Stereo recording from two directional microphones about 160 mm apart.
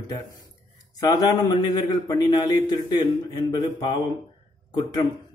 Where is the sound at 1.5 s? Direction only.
25° left (ahead or behind).